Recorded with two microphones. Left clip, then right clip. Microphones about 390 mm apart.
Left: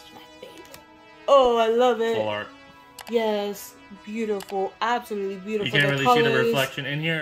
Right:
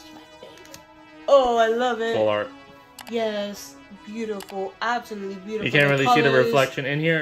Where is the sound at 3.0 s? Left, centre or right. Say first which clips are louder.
Left 2 dB; centre.